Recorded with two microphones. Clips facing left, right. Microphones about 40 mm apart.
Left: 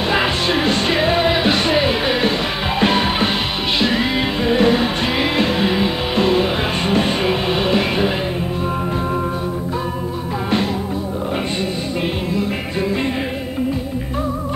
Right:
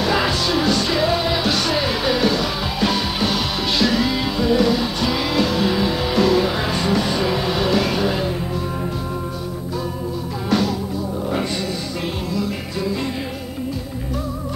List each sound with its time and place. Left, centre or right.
0.1 s music: left